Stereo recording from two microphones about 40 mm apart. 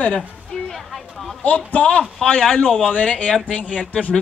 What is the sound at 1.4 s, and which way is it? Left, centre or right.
Speech, left.